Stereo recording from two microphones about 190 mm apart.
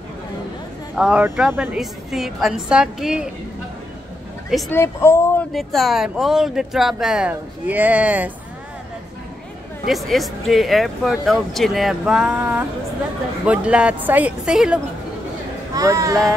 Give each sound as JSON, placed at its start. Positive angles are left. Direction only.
{"t": 0.9, "sound": "speech", "side_deg": -5}
{"t": 4.6, "sound": "speech", "side_deg": 15}
{"t": 5.5, "sound": "speech", "side_deg": 0}
{"t": 9.8, "sound": "speech", "side_deg": 0}
{"t": 15.7, "sound": "speech", "side_deg": -20}